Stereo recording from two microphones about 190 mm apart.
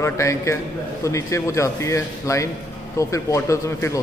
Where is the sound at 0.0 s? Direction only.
15° left (ahead or behind).